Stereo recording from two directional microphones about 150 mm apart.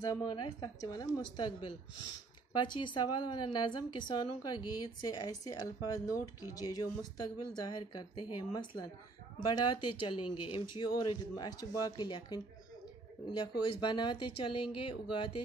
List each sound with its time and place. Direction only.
0.1 s a woman's voice: 25° left (ahead or behind)
9.8 s a woman's voice: 30° left (ahead or behind)